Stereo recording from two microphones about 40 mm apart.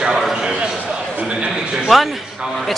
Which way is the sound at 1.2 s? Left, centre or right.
Right.